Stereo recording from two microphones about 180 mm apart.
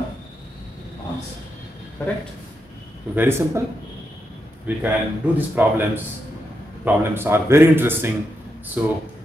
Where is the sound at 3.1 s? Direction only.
15° right (ahead or behind).